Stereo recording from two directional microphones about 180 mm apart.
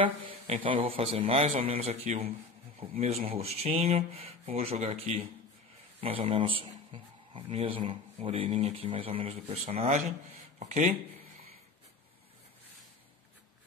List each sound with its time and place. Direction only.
0.0 s speech: 30° right (ahead or behind)